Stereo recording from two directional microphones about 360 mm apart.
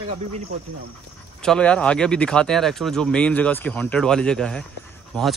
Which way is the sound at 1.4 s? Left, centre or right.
Centre.